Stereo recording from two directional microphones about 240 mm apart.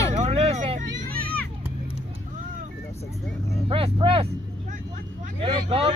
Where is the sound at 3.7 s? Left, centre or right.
Right.